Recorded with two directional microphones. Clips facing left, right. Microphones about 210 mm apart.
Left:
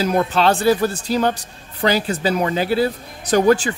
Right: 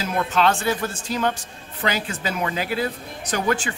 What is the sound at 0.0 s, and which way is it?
Speech, 35° left (ahead or behind).